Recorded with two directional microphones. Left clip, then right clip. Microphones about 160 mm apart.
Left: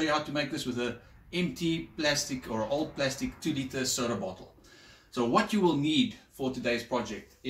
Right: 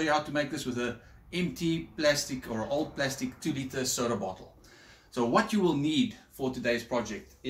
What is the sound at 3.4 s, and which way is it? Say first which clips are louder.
Speech: left 1 dB; 15° right (ahead or behind).